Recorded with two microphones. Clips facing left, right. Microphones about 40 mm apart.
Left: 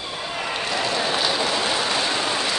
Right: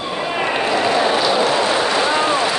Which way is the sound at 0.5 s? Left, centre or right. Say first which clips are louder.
Right 7 dB; right.